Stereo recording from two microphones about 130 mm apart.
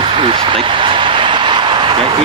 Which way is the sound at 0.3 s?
40° right (ahead or behind).